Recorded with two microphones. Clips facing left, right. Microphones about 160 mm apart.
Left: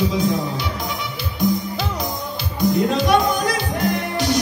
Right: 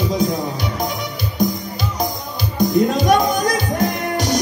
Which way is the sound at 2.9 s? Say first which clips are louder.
Right 2 dB; 40° right (ahead or behind).